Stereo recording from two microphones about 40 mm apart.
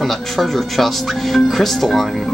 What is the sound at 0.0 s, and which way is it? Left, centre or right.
Speech, centre.